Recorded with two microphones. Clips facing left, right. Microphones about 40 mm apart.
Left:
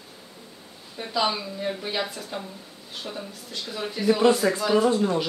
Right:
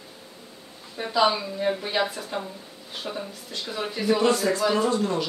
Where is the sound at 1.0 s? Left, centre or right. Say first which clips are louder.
Right 4 dB; centre.